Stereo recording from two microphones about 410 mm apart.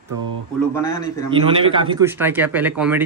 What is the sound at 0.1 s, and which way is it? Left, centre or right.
Speech, right.